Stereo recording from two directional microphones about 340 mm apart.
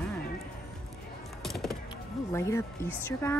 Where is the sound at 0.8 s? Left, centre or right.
Centre.